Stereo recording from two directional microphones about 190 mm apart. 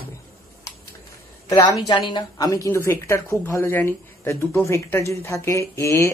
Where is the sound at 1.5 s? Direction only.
25° left (ahead or behind).